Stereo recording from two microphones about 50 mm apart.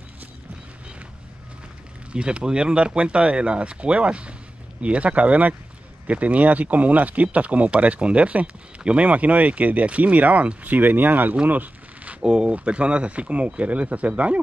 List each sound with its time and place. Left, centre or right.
2.1 s speech: centre; by 11.3 s right
11.5 s a sound: right
12.2 s speech: centre